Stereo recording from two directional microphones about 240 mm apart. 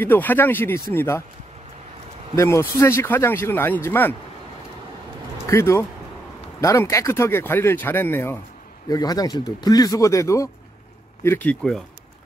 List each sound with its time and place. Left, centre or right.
0.0 s speech: centre
2.3 s speech: centre
5.5 s speech: centre